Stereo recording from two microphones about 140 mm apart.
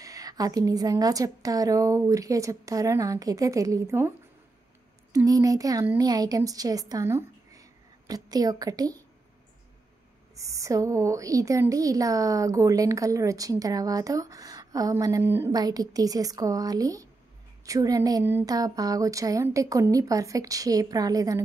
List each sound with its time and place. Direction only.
0.0 s a woman's voice: 25° right (ahead or behind)
5.1 s a woman's voice: 25° right (ahead or behind)
10.3 s a woman's voice: 25° right (ahead or behind)
15.5 s a woman's voice: 25° right (ahead or behind)